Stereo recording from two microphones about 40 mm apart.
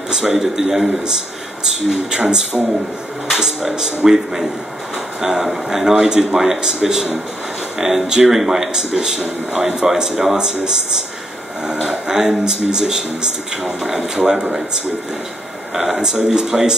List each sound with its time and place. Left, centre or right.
0.1 s speech: centre
15.7 s speech: centre